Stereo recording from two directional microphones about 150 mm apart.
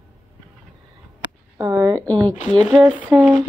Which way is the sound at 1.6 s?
25° right (ahead or behind).